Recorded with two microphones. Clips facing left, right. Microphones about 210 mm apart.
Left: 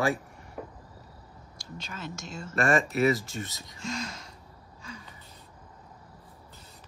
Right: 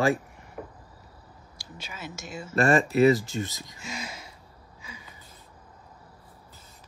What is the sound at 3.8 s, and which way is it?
Speech, 5° right (ahead or behind).